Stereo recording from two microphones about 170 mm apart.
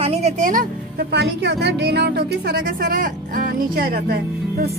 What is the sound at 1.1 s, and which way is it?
Speech, 85° right.